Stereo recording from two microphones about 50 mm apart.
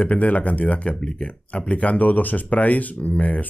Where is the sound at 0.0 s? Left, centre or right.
Left.